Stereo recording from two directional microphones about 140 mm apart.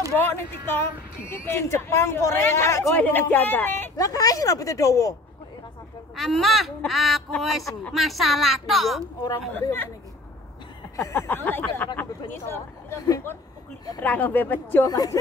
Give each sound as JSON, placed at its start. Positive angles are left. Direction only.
{"t": 0.2, "sound": "speech", "side_deg": 15}
{"t": 3.9, "sound": "speech", "side_deg": 25}
{"t": 6.1, "sound": "speech", "side_deg": 0}
{"t": 9.5, "sound": "speech", "side_deg": 15}
{"t": 11.0, "sound": "speech", "side_deg": 20}
{"t": 14.0, "sound": "speech", "side_deg": 10}
{"t": 14.9, "sound": "speech", "side_deg": 25}